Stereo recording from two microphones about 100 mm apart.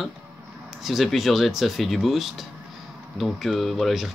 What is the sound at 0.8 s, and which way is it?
Speech, centre (ahead or behind).